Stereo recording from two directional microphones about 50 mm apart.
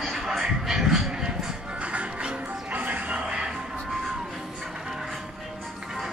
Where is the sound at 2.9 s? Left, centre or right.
Right.